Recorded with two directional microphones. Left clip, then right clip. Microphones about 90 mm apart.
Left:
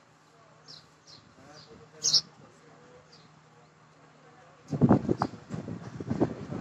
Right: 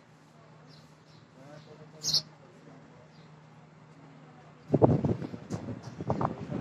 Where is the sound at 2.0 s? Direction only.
35° left (ahead or behind).